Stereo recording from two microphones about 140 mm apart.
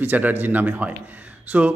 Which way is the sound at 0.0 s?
10° right (ahead or behind).